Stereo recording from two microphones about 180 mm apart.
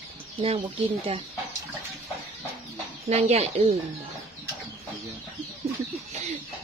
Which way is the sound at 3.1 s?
35° right (ahead or behind).